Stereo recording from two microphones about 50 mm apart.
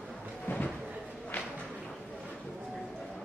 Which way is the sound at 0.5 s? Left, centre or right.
Left.